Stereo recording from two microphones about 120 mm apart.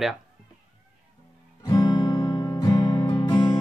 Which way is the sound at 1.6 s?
35° left (ahead or behind).